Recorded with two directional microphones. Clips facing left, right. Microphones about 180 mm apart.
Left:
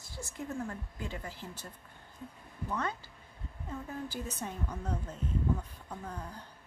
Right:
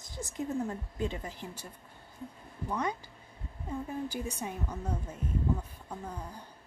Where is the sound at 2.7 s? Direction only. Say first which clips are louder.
Right 3 dB; 15° right (ahead or behind).